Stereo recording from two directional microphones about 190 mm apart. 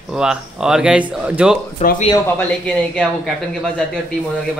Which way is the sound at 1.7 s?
40° left (ahead or behind).